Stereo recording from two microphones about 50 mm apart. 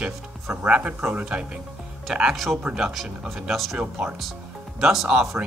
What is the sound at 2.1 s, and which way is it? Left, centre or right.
Speech, centre.